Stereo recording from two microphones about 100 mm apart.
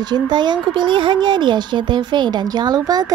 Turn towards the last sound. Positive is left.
turn(degrees=-40)  # may be behind; listen again after turning